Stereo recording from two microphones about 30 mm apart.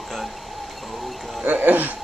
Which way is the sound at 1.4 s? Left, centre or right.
Right.